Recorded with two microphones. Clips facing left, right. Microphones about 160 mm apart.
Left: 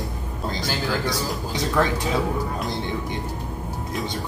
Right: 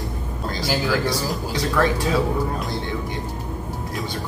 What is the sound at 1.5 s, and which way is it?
Speech, 20° left (ahead or behind).